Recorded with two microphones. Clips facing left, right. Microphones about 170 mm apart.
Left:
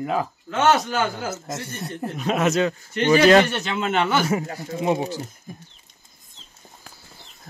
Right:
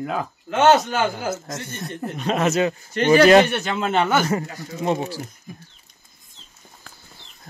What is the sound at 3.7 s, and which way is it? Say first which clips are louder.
Speech: right 2 dB; 40° right (ahead or behind).